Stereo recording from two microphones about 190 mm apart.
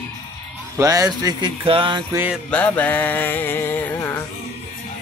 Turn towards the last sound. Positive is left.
turn(degrees=15)  # may be behind; listen again after turning